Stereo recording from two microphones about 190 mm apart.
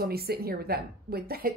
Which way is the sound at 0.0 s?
55° right (ahead or behind).